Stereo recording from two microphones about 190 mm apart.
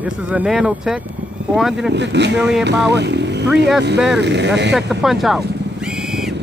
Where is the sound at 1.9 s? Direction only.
65° right (ahead or behind).